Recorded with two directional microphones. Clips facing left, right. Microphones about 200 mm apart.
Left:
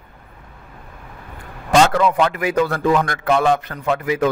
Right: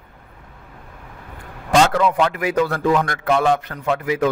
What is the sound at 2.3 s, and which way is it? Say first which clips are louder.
A man's voice: left 1 dB; 50° left (ahead or behind).